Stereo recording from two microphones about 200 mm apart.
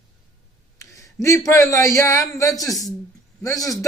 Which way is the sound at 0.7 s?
15° left (ahead or behind).